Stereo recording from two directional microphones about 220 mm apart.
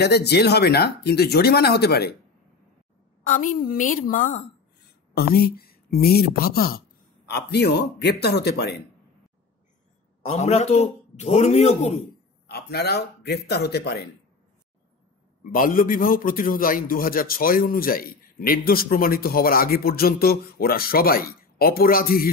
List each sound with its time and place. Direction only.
0.0 s speech: 50° left (ahead or behind)
3.3 s a man's voice: 35° left (ahead or behind)
10.2 s a man's voice: 30° left (ahead or behind)
12.4 s speech: 45° left (ahead or behind)
15.5 s a man's voice: 40° left (ahead or behind)